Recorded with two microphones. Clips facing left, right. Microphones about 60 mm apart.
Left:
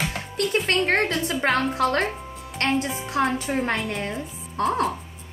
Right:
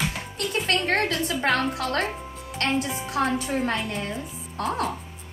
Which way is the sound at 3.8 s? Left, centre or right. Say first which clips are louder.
Left 2 dB; left.